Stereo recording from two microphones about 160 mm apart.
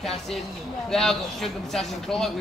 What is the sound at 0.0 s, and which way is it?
A man's voice, centre (ahead or behind).